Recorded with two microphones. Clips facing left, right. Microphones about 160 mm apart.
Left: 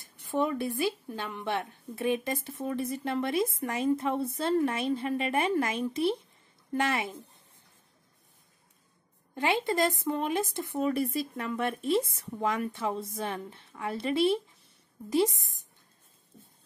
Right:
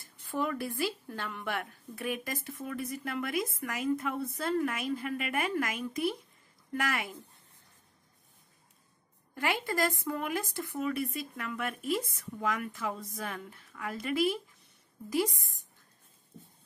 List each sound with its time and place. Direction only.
0.3 s a woman's voice: 20° left (ahead or behind)
9.3 s a woman's voice: 25° left (ahead or behind)
10.9 s a woman's voice: 35° left (ahead or behind)